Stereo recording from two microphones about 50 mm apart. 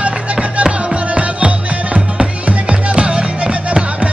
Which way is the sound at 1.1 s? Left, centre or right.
Right.